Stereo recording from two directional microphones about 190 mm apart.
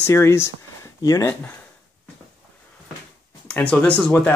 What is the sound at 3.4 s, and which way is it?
Speech, 5° left (ahead or behind).